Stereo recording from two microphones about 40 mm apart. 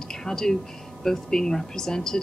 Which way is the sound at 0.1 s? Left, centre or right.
Centre.